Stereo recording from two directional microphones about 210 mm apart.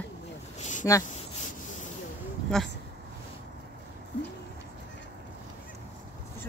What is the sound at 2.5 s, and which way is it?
Speech, centre (ahead or behind).